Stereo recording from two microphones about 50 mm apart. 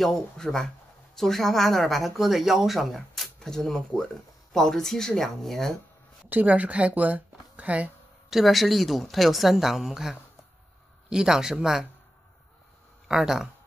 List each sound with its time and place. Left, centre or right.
0.0 s speech: centre
6.2 s speech: right
8.3 s speech: centre
13.1 s speech: centre